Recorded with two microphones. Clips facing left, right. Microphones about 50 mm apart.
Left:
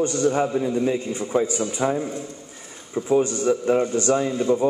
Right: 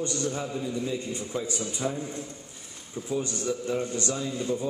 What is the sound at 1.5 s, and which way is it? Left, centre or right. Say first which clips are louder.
A man's voice: left 8 dB; left.